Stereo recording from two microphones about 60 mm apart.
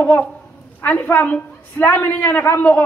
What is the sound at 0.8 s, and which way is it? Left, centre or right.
A man's voice, left.